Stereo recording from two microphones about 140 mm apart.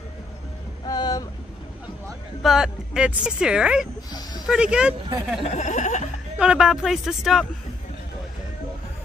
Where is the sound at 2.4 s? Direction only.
5° right (ahead or behind).